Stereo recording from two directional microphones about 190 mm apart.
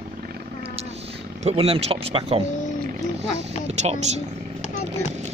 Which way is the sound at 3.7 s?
35° right (ahead or behind).